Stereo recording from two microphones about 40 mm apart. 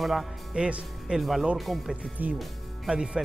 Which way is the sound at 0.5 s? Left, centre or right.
Right.